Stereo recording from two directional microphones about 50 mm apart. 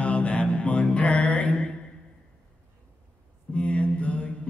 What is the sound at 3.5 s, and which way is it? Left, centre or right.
Mantra, left.